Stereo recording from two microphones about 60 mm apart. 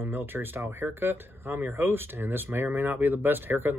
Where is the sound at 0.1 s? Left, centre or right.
Right.